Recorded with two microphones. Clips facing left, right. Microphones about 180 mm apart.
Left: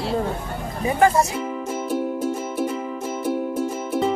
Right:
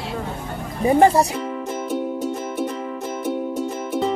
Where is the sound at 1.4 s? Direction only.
5° left (ahead or behind).